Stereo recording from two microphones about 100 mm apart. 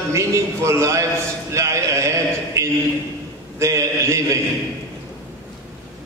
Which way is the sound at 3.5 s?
30° right (ahead or behind).